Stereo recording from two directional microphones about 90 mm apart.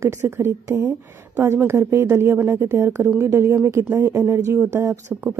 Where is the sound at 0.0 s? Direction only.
30° right (ahead or behind).